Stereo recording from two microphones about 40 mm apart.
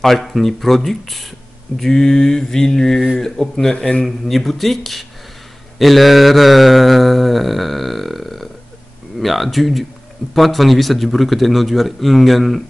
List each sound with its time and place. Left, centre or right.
0.0 s a man's voice: centre
1.8 s mantra: centre
4.0 s a man's voice: centre
5.8 s mantra: centre
9.2 s a man's voice: centre